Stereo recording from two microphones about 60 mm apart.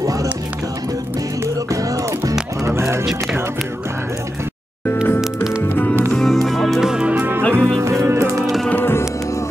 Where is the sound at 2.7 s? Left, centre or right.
Right.